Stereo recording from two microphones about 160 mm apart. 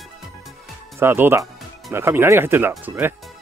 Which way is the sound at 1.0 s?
15° right (ahead or behind).